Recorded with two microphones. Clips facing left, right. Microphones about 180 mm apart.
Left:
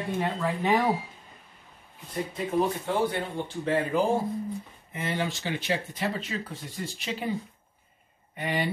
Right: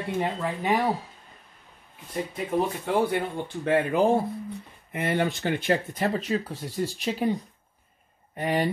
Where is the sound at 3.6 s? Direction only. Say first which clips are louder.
Right 4 dB; 60° right (ahead or behind).